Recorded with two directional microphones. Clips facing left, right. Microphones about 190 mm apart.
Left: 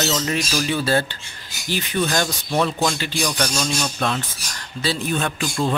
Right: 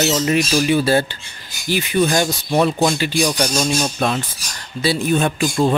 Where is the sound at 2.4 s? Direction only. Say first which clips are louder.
Right 5 dB; 25° right (ahead or behind).